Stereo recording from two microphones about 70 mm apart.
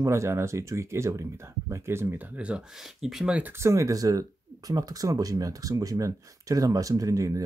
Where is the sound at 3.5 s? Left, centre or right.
Right.